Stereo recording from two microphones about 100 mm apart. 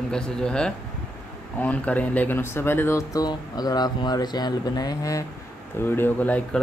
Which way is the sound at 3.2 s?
40° left (ahead or behind).